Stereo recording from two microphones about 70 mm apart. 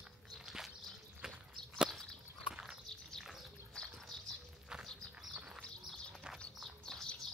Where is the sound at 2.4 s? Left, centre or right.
Centre.